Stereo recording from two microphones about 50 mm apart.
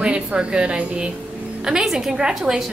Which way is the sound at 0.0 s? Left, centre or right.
Centre.